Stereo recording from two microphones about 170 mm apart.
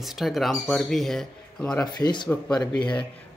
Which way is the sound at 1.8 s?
25° left (ahead or behind).